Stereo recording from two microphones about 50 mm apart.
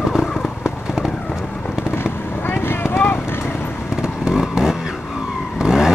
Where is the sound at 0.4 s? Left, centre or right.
Centre.